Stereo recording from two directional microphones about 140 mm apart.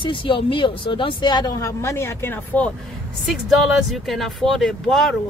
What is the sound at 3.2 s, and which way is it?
Speech, centre (ahead or behind).